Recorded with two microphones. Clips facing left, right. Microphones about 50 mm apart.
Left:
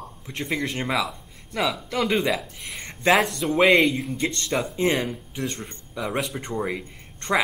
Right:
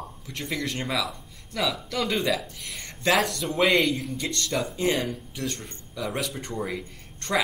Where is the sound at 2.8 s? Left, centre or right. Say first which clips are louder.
Left 3 dB; left.